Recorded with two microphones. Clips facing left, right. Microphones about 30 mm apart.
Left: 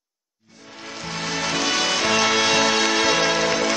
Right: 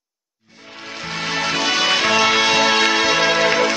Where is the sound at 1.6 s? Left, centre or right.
Centre.